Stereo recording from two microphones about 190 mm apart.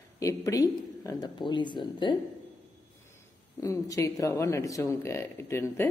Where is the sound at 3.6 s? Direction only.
15° left (ahead or behind).